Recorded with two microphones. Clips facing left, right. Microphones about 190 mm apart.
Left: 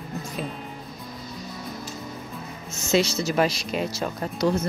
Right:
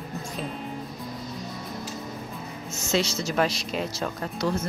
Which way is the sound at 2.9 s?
10° left (ahead or behind).